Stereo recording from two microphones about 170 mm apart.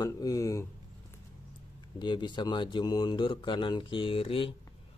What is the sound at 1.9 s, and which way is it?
Speech, 25° left (ahead or behind).